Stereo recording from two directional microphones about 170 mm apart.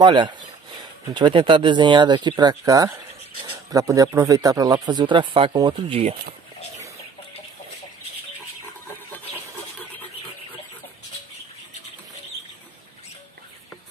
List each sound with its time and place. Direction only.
0.0 s speech: 25° right (ahead or behind)